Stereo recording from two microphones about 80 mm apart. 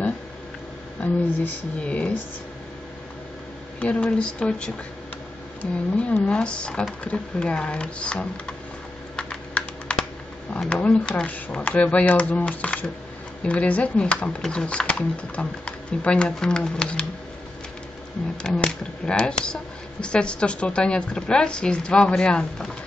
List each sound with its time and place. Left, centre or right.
1.0 s speech: left
3.8 s speech: centre
9.1 s computer keyboard: centre
10.6 s speech: centre
18.4 s speech: centre